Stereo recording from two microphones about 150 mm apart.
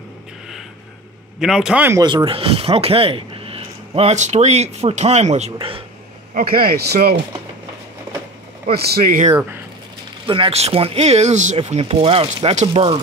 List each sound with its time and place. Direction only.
1.4 s a man's voice: 5° right (ahead or behind)
2.0 s speech: 35° right (ahead or behind)
6.3 s speech: 80° right
8.7 s speech: 90° right
10.2 s speech: 35° right (ahead or behind); by 11.5 s 50° right (ahead or behind)
11.5 s speech: 40° right (ahead or behind)